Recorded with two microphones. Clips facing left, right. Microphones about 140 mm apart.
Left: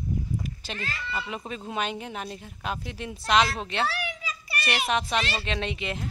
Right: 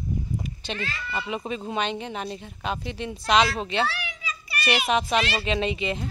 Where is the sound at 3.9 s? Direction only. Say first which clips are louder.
Left 2 dB; 40° left (ahead or behind).